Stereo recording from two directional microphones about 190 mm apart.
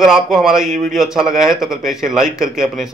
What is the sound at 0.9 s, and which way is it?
Speech, centre (ahead or behind).